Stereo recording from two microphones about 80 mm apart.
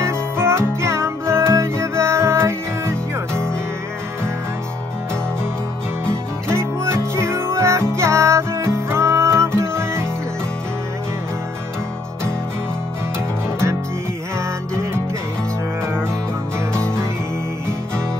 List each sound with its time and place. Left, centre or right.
0.0 s music: right
6.5 s music: right
15.8 s music: right
16.7 s music: centre